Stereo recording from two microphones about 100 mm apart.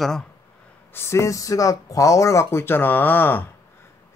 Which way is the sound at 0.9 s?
25° left (ahead or behind).